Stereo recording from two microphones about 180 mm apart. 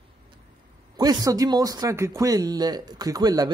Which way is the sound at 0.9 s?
20° right (ahead or behind).